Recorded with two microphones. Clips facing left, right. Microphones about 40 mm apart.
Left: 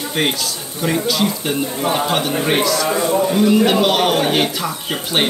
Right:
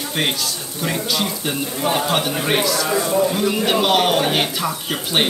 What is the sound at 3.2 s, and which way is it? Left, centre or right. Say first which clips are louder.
A man's voice: left 5 dB; centre.